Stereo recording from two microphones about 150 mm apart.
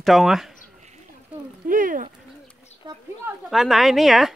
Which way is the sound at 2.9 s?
30° right (ahead or behind).